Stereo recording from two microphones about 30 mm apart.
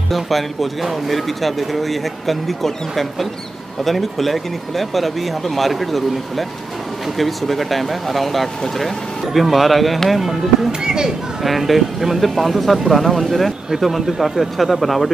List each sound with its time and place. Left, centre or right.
0.1 s speech: centre
10.7 s speech: right
11.4 s speech: centre